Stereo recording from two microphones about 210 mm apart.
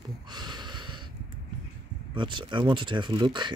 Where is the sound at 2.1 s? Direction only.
20° right (ahead or behind).